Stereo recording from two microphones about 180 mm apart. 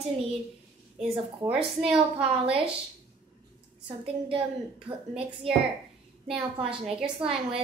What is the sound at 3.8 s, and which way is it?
A woman's voice, 30° right (ahead or behind).